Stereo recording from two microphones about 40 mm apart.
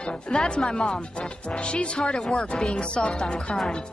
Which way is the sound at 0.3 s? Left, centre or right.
Centre.